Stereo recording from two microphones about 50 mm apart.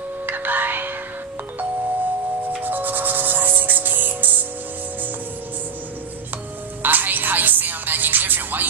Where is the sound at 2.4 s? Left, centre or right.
Right.